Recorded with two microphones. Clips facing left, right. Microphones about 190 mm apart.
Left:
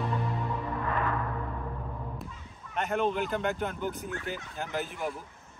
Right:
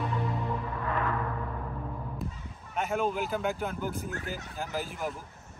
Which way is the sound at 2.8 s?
5° right (ahead or behind).